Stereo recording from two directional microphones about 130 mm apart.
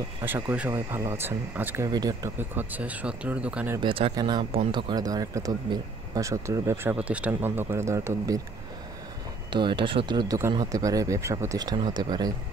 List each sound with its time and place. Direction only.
0.2 s speech: 15° right (ahead or behind)
1.9 s speech: 30° right (ahead or behind)
2.3 s speech: 15° right (ahead or behind)
3.8 s speech: 40° right (ahead or behind); by 8.4 s 20° right (ahead or behind)
9.5 s speech: 40° right (ahead or behind)